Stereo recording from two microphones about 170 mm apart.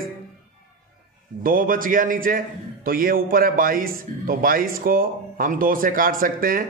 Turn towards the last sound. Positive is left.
turn(degrees=-55)  # may be behind; listen again after turning